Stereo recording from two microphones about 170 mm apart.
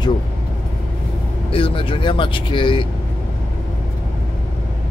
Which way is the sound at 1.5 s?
30° left (ahead or behind).